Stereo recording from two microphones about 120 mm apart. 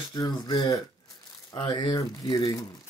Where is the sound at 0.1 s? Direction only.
35° left (ahead or behind).